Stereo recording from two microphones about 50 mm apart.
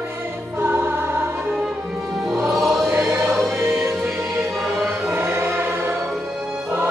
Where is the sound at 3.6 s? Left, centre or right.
Right.